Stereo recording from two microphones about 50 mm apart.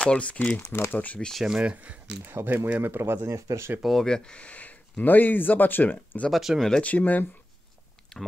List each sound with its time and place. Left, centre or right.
0.0 s speech: left
0.7 s speech: left
0.9 s speech: left
1.6 s speech: right
2.2 s speech: right
2.8 s speech: right
3.3 s speech: right
4.0 s speech: centre
4.4 s speech: left
6.3 s speech: centre
6.8 s speech: left
8.1 s a sound: centre